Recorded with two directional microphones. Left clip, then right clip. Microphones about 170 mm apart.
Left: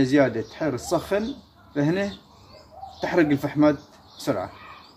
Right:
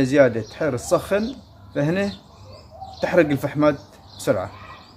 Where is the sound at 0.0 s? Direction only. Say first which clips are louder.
Right 4 dB; 30° right (ahead or behind).